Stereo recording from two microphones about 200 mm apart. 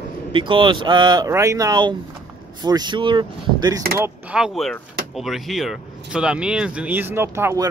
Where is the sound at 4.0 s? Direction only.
10° right (ahead or behind).